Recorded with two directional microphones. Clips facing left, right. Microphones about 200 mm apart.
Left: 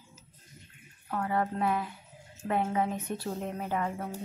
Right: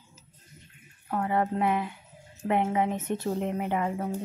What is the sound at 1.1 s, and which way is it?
A woman's voice, 25° right (ahead or behind).